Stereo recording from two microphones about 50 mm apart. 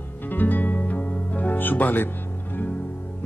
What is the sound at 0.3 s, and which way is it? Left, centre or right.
Music, left.